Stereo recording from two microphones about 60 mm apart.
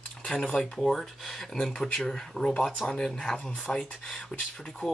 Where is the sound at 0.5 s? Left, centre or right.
Centre.